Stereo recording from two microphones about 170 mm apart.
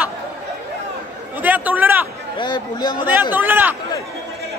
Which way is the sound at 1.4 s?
10° right (ahead or behind).